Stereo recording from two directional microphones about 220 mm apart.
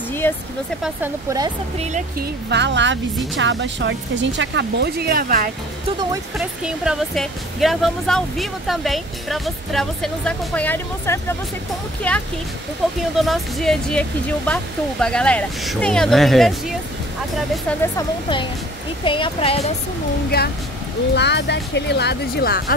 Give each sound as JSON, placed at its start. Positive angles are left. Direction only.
{"t": 0.2, "sound": "speech", "side_deg": 10}
{"t": 0.8, "sound": "speech", "side_deg": -10}
{"t": 1.8, "sound": "speech", "side_deg": -35}
{"t": 2.5, "sound": "speech", "side_deg": -55}
{"t": 6.3, "sound": "speech", "side_deg": -5}
{"t": 19.0, "sound": "speech", "side_deg": 25}
{"t": 20.3, "sound": "speech", "side_deg": 45}